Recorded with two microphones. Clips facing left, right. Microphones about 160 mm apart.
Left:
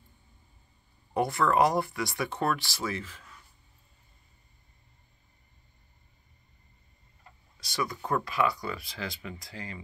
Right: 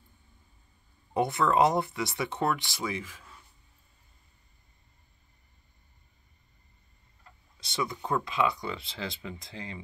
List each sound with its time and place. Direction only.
1.1 s speech: 20° right (ahead or behind)
7.6 s speech: 20° right (ahead or behind)